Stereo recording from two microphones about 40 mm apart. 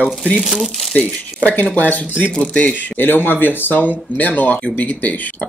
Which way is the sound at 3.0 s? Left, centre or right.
Left.